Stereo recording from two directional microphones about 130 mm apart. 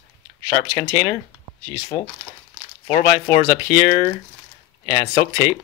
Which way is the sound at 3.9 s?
45° left (ahead or behind).